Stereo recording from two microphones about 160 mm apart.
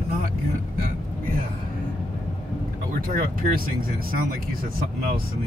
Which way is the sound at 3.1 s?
60° right (ahead or behind).